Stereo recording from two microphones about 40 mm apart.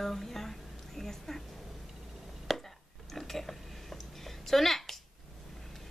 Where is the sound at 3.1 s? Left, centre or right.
Centre.